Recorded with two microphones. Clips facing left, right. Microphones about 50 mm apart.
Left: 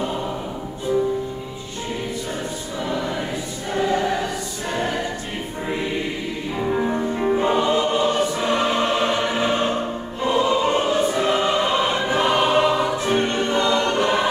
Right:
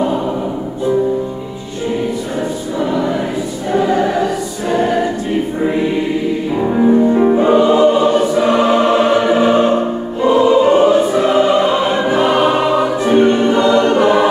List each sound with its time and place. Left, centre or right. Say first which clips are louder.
3.7 s choir: right 7 dB; centre
6.6 s choir: right 10 dB; centre
10.2 s music: right 9 dB; centre